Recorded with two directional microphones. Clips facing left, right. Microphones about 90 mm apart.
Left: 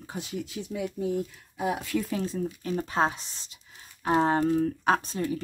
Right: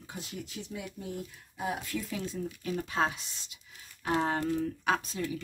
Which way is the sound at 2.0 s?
40° left (ahead or behind).